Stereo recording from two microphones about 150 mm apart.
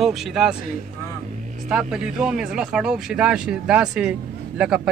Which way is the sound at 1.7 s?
5° right (ahead or behind).